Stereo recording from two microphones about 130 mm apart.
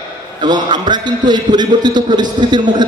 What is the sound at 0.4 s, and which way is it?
A man's voice, 35° right (ahead or behind).